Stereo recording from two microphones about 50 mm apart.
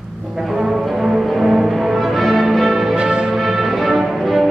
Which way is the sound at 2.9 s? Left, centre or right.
Centre.